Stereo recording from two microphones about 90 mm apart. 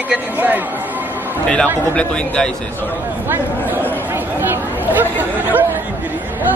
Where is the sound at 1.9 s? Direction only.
10° left (ahead or behind).